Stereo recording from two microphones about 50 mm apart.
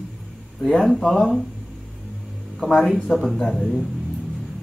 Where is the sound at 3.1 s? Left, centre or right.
Centre.